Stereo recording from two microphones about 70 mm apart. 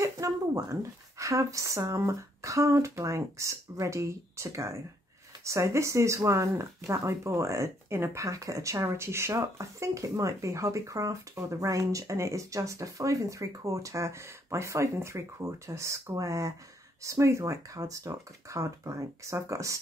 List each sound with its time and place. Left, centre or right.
0.0 s speech: right